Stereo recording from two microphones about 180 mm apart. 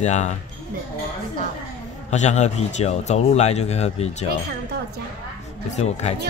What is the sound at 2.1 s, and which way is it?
A man's voice, 40° left (ahead or behind).